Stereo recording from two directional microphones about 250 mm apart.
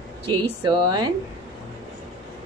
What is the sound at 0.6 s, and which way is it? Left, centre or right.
Speech, centre.